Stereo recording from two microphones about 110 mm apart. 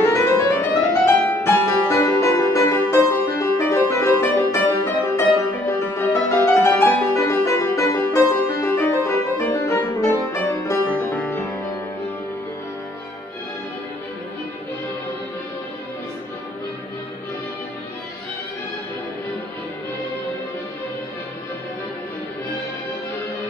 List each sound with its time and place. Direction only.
0.0 s music: 25° left (ahead or behind)